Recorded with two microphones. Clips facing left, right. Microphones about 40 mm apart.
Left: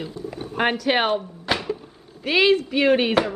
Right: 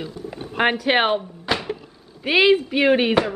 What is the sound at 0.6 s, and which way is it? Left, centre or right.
Speech, centre.